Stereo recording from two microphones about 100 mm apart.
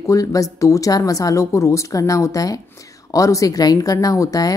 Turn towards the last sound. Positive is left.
turn(degrees=35)  # may be behind; listen again after turning